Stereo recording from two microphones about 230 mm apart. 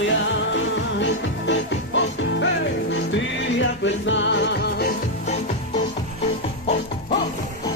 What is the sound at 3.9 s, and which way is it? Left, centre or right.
Music, left.